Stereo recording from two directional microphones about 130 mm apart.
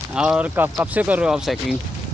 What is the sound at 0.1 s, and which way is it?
Speech, 5° right (ahead or behind).